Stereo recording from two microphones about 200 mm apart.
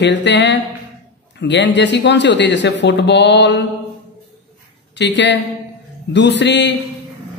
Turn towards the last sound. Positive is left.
turn(degrees=60)  # may be behind; listen again after turning